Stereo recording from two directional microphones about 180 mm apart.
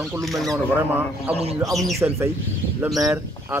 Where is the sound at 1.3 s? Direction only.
35° right (ahead or behind).